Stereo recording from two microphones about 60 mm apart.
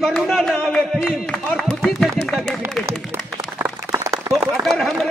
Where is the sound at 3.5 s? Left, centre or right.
Right.